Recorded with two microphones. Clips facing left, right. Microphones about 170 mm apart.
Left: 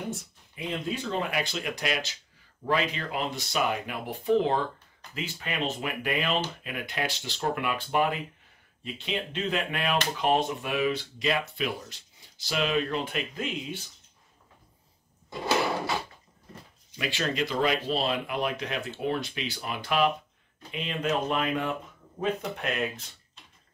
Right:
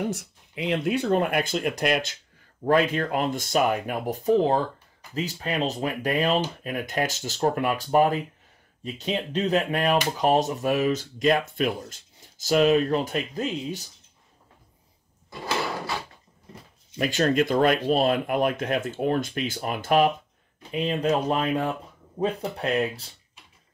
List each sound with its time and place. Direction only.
0.1 s speech: 85° right; by 13.8 s 40° right (ahead or behind)
17.0 s speech: 45° right (ahead or behind)